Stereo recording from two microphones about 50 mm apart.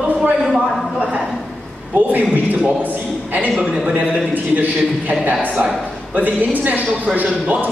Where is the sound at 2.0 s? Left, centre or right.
Right.